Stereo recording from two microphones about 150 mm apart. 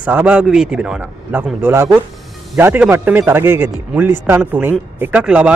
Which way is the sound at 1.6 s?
15° right (ahead or behind).